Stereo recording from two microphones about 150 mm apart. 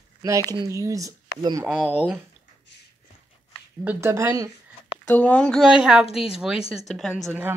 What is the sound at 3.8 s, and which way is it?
Speech, 15° right (ahead or behind).